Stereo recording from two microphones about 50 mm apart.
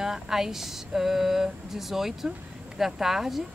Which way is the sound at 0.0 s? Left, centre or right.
Centre.